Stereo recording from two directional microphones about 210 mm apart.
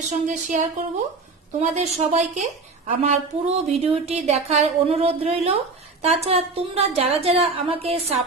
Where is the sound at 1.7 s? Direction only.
30° right (ahead or behind).